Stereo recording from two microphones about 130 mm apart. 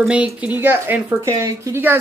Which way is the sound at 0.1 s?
10° right (ahead or behind).